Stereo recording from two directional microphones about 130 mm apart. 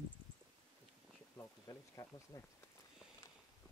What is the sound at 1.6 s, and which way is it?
Speech, 30° left (ahead or behind).